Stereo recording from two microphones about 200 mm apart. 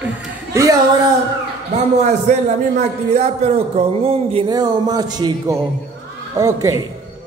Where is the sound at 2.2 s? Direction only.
35° right (ahead or behind); by 6.8 s 15° right (ahead or behind).